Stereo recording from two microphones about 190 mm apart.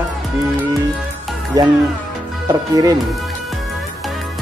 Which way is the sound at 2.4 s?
20° right (ahead or behind).